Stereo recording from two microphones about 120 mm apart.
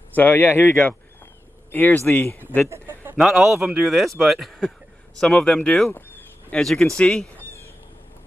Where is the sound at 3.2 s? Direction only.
Centre (ahead or behind).